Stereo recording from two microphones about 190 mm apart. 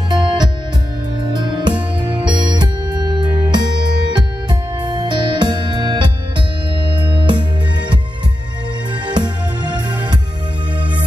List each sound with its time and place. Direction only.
0.1 s music: 25° right (ahead or behind)
9.0 s music: 25° right (ahead or behind)